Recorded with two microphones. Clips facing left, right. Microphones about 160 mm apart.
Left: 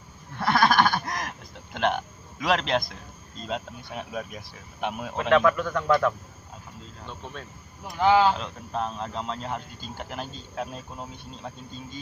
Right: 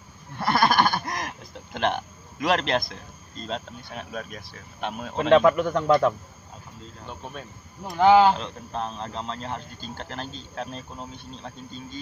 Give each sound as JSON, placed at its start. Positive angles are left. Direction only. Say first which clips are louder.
{"t": 0.4, "sound": "a sound", "louder": "even", "side_deg": -5}
{"t": 2.4, "sound": "a man's voice", "louder": "right 1 dB", "side_deg": 0}
{"t": 3.4, "sound": "speech", "louder": "left 1 dB", "side_deg": 10}
{"t": 5.1, "sound": "speech", "louder": "right 4 dB", "side_deg": -25}
{"t": 8.0, "sound": "speech", "louder": "right 4 dB", "side_deg": -25}
{"t": 8.4, "sound": "speech", "louder": "left 1 dB", "side_deg": 5}